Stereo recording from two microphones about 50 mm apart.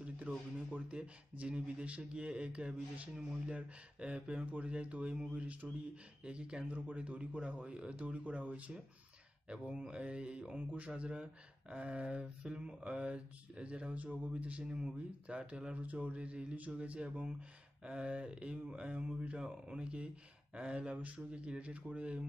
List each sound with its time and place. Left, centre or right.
0.3 s speech: right
9.5 s speech: centre
14.6 s speech: centre
15.8 s speech: right